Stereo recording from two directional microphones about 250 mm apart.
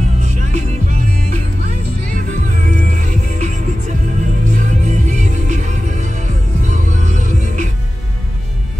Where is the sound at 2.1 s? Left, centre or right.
Right.